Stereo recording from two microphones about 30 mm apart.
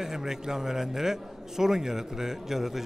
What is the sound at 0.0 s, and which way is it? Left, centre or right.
A man's voice, centre.